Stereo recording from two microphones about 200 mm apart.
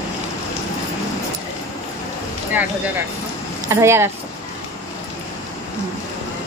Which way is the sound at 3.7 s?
15° right (ahead or behind).